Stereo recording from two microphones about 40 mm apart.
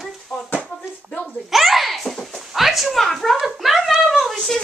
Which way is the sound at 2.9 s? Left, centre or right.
Centre.